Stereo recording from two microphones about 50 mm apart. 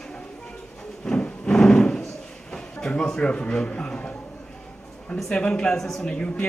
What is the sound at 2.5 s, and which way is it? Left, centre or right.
A man's voice, centre.